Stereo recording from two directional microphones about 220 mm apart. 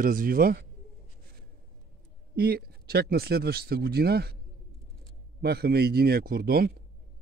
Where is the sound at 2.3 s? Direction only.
45° right (ahead or behind).